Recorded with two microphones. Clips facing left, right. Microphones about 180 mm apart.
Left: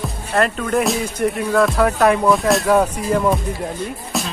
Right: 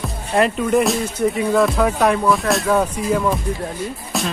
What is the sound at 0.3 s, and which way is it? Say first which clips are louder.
Speech: right 2 dB; 10° right (ahead or behind).